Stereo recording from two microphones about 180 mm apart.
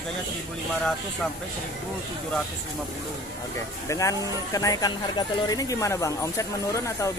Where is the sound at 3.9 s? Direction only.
15° left (ahead or behind).